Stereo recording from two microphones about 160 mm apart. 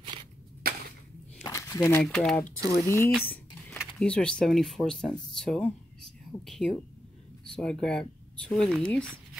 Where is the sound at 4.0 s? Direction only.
5° left (ahead or behind).